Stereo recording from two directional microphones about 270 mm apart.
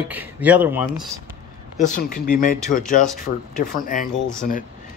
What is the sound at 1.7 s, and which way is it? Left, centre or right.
Speech, left.